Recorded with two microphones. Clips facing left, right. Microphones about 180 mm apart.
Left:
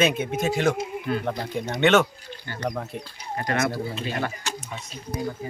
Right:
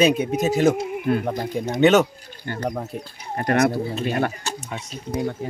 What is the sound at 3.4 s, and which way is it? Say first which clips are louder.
Speech: right 6 dB; 55° right (ahead or behind).